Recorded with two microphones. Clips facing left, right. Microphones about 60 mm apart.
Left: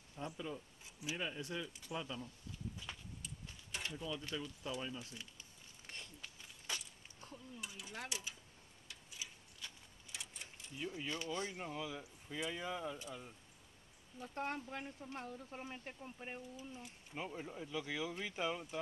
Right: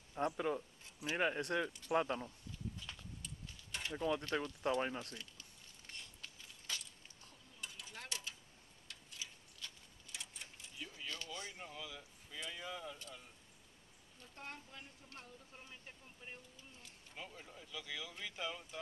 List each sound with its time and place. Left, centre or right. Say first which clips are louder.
0.2 s speech: right 8 dB; right
2.9 s walk: left 2 dB; centre
3.9 s speech: right 9 dB; right
5.1 s speech: right 1 dB; centre
6.2 s a sound: even; centre
8.8 s tick-tock: even; centre
10.1 s a sound: even; centre
10.8 s speech: left 5 dB; centre
14.2 s speech: left 10 dB; left
16.5 s speech: left 9 dB; centre